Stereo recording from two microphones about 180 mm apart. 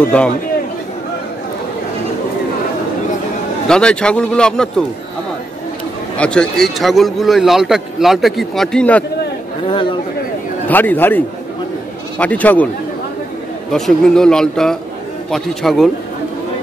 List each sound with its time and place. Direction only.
0.1 s a man's voice: 5° left (ahead or behind)
3.6 s a man's voice: 5° left (ahead or behind)
6.1 s a man's voice: 5° left (ahead or behind)
9.7 s a man's voice: 30° left (ahead or behind)
10.7 s a man's voice: 10° left (ahead or behind)
13.7 s a man's voice: centre (ahead or behind)